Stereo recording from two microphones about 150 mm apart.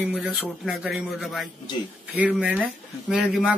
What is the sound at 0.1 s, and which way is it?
Speech, 5° right (ahead or behind).